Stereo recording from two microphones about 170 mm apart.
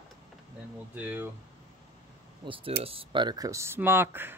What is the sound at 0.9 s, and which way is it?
Speech, 10° right (ahead or behind).